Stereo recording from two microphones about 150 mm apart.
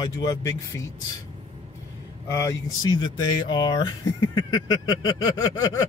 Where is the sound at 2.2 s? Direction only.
20° left (ahead or behind).